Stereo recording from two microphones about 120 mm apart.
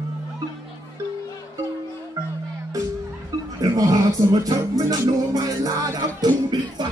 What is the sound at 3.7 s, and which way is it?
Music, 30° right (ahead or behind).